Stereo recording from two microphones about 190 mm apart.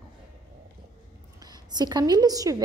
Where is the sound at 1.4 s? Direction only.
20° right (ahead or behind).